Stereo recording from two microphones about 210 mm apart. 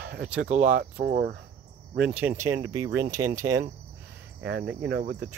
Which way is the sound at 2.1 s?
10° right (ahead or behind).